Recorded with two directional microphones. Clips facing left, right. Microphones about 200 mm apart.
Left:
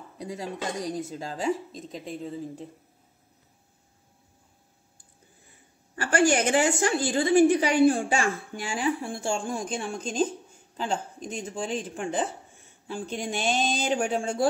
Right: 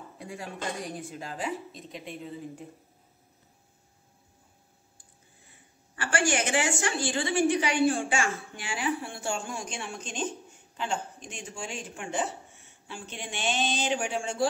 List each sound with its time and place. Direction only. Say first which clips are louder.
0.2 s speech: left 5 dB; 20° left (ahead or behind)
1.0 s a woman's voice: left 6 dB; 35° left (ahead or behind)
5.9 s a woman's voice: left 5 dB; 40° left (ahead or behind)
9.2 s a woman's voice: left 4 dB; 30° left (ahead or behind)